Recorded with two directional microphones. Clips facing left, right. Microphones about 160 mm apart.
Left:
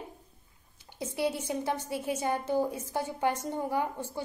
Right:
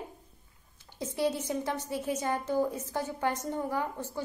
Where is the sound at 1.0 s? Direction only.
10° left (ahead or behind).